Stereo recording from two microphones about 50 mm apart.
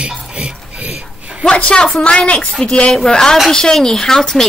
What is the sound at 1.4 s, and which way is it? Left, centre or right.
Speech, left.